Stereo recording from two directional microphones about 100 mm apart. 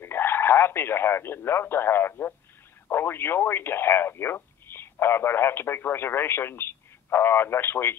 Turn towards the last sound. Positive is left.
turn(degrees=25)  # may be behind; listen again after turning